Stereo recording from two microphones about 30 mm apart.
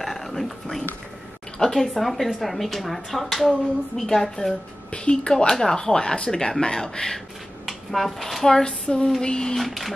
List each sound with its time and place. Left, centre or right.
0.0 s whispering: centre
1.7 s a woman's voice: centre
4.9 s a woman's voice: left
5.5 s speech: centre
7.6 s speech: centre
8.6 s a woman's voice: left
9.6 s speech: centre